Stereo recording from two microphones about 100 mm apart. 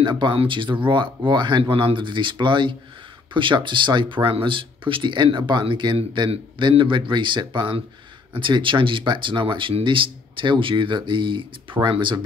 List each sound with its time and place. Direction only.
0.0 s speech: 55° right (ahead or behind)
1.6 s speech: 65° right (ahead or behind)